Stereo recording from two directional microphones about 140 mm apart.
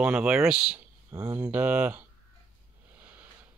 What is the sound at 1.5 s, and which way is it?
Speech, 10° right (ahead or behind).